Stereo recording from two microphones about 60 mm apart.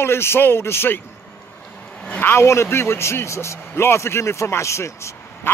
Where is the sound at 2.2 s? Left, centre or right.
Left.